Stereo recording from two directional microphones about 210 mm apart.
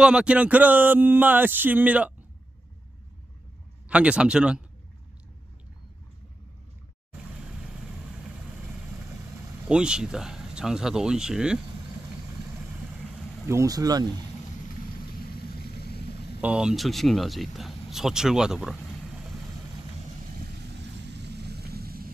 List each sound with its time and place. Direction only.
0.0 s speech: 5° right (ahead or behind)
3.9 s speech: 5° right (ahead or behind)
7.3 s vehicle: 5° right (ahead or behind)
9.3 s speech: 10° right (ahead or behind)
13.1 s vehicle: 5° right (ahead or behind)
13.6 s speech: 15° right (ahead or behind)
15.0 s vehicle: 45° left (ahead or behind)
16.3 s speech: 5° right (ahead or behind)
20.3 s vehicle: 55° right (ahead or behind)